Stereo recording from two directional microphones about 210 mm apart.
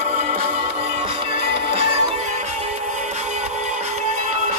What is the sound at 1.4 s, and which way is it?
Music, 50° right (ahead or behind).